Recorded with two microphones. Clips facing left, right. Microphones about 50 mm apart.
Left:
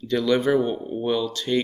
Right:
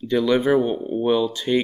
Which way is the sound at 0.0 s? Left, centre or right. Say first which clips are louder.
Right 2 dB; centre.